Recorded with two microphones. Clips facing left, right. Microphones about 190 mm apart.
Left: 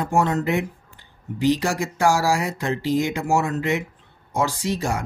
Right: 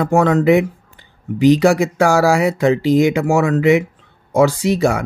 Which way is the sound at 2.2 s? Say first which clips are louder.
Right 8 dB; 65° right (ahead or behind).